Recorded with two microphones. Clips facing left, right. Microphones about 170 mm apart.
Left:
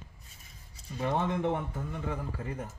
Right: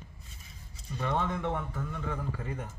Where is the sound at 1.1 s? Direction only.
20° left (ahead or behind).